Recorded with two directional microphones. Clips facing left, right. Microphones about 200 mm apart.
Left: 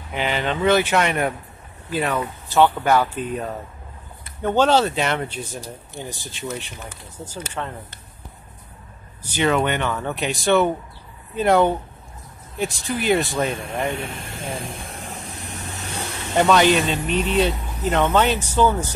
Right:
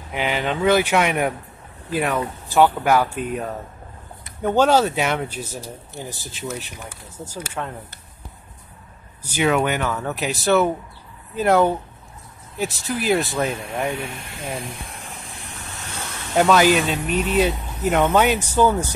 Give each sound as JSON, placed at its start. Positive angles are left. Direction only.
{"t": 0.1, "sound": "speech", "side_deg": -10}
{"t": 9.3, "sound": "speech", "side_deg": -5}
{"t": 13.9, "sound": "speech", "side_deg": 50}
{"t": 16.3, "sound": "speech", "side_deg": -5}